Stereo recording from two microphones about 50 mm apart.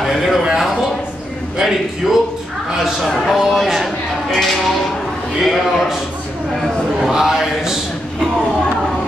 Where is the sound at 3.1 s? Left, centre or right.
Centre.